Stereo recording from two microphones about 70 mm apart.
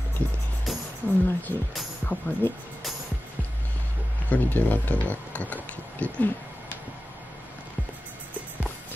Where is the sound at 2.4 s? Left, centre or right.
Left.